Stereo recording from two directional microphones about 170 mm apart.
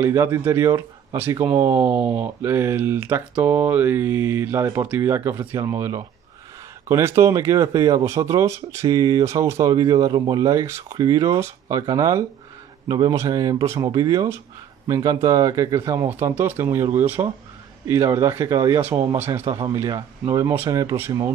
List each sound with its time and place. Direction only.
0.0 s speech: 15° right (ahead or behind)